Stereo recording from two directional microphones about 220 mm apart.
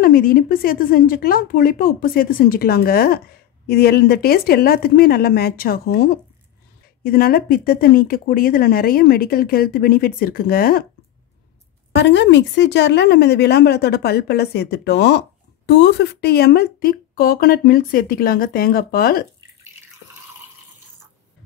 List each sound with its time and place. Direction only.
0.0 s a woman's voice: 40° left (ahead or behind)
11.9 s speech: 55° left (ahead or behind)